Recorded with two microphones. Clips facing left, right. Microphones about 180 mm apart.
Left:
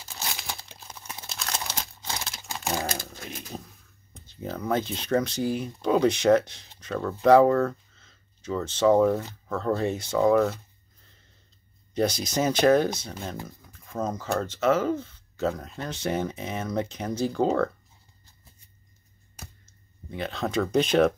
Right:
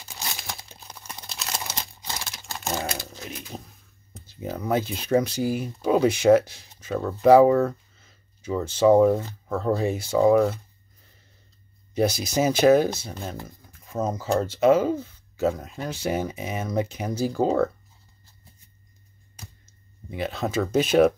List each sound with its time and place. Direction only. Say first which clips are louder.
0.3 s crumpling: even; centre (ahead or behind)
2.4 s typing: even; 15° left (ahead or behind)
2.7 s typing: right 1 dB; 5° right (ahead or behind)
4.1 s speech: right 2 dB; 5° right (ahead or behind)
11.9 s speech: right 2 dB; 10° right (ahead or behind)
20.1 s speech: right 2 dB; 5° right (ahead or behind)